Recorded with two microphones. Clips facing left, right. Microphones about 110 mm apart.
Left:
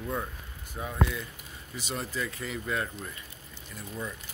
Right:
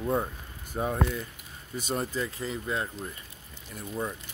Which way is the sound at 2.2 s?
25° right (ahead or behind).